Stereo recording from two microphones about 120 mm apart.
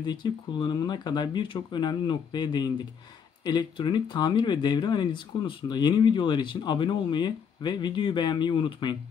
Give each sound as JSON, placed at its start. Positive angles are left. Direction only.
{"t": 0.0, "sound": "speech", "side_deg": 40}